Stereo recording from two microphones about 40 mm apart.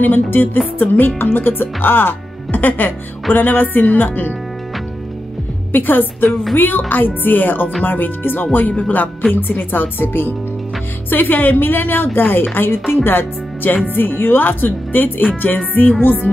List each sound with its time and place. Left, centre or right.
0.0 s speech: left
5.7 s speech: left
9.3 s speech: left
12.5 s a woman's voice: left